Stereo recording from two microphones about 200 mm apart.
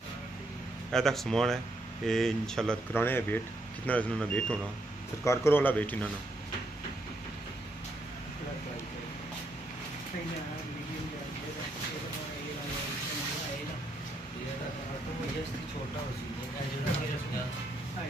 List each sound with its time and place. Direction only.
0.9 s speech: centre (ahead or behind)